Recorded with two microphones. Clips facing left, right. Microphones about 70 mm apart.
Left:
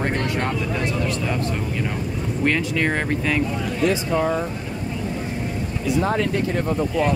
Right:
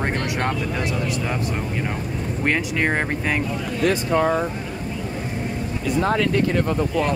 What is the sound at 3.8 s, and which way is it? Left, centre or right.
Speech, right.